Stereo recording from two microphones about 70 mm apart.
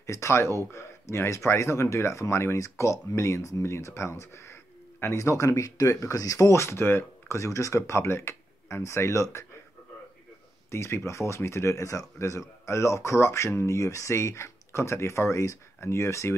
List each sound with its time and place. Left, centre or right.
0.0 s speech: left
10.7 s speech: left